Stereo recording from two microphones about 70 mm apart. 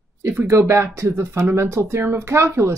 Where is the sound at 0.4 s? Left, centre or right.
Right.